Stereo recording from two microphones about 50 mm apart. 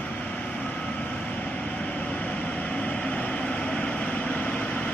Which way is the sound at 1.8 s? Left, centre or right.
Left.